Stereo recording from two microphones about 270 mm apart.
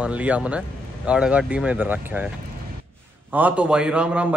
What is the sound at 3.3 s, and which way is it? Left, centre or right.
Speech, centre.